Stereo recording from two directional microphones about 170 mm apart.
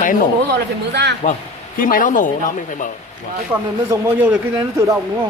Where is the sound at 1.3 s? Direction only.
55° left (ahead or behind).